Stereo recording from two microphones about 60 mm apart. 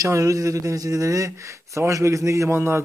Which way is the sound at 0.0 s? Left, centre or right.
Right.